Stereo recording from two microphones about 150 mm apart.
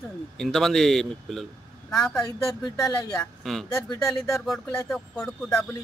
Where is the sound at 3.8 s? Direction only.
20° left (ahead or behind).